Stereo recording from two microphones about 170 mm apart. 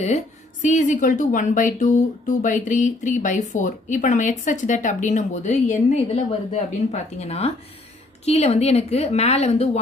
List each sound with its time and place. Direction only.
0.0 s a woman's voice: 45° left (ahead or behind)